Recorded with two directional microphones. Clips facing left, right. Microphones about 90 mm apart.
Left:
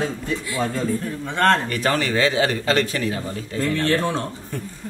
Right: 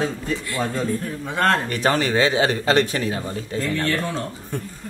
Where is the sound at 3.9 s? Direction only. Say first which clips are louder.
Left 3 dB; 30° left (ahead or behind).